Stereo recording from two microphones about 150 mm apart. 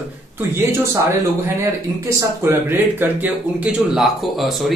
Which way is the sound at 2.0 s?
20° right (ahead or behind).